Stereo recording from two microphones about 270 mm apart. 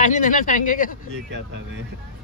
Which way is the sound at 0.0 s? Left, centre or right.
Left.